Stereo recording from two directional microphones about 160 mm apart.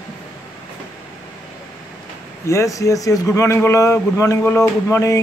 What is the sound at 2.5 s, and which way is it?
Speech, 20° left (ahead or behind).